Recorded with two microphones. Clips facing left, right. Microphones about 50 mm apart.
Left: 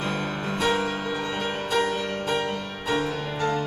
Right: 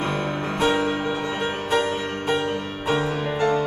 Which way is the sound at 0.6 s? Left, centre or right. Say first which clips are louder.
Right 3 dB; right.